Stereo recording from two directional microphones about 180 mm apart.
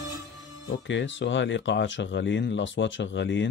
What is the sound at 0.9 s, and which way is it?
Speech, 90° left.